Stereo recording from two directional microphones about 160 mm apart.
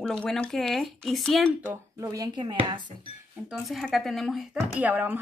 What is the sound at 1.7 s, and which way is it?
Speech, 20° right (ahead or behind).